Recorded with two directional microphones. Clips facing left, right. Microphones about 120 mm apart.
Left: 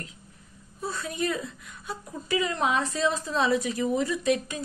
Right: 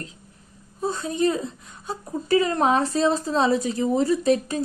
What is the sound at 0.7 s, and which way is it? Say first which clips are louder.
Speech: right 7 dB; 25° right (ahead or behind).